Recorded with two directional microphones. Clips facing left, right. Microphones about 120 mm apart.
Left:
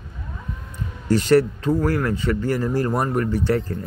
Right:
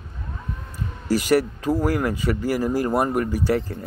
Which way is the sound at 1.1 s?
10° right (ahead or behind).